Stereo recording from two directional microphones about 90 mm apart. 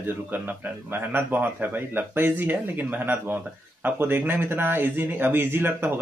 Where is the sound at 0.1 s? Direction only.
20° right (ahead or behind).